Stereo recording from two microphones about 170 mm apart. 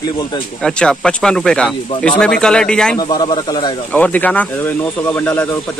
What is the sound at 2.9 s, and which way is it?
Speech, 25° left (ahead or behind).